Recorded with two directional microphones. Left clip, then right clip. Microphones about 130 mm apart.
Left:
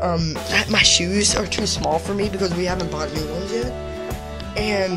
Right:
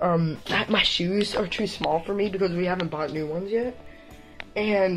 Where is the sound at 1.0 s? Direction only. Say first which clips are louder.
Left 5 dB; 35° left (ahead or behind).